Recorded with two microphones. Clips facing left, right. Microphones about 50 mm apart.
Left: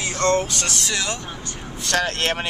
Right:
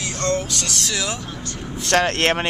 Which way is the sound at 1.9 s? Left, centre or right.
Right.